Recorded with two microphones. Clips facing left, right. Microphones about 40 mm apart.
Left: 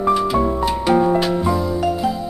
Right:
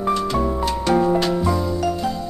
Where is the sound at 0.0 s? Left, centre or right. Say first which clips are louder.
Left 4 dB; centre.